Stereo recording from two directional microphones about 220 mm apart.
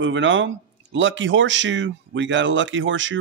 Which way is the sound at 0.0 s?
60° right (ahead or behind).